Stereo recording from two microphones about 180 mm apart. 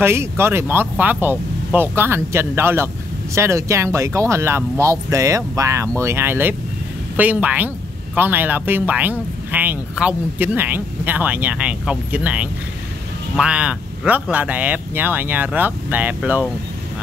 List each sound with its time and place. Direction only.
0.0 s speech: 15° right (ahead or behind)